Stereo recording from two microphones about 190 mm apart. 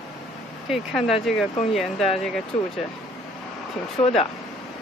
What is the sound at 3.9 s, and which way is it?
Speech, 30° left (ahead or behind).